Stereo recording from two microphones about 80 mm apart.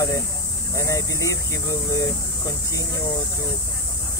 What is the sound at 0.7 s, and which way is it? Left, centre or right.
Speech, left.